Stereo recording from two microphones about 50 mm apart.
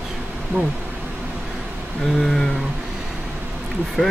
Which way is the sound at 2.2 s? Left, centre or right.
Centre.